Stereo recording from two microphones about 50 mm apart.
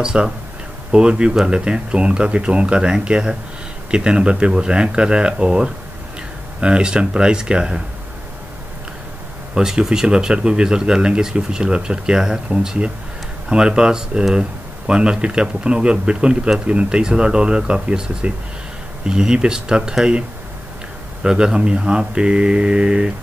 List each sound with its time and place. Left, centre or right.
0.0 s speech: centre
9.6 s speech: centre
21.2 s speech: centre